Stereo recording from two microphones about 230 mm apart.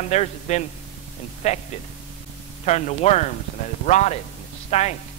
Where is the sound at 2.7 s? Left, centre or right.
Left.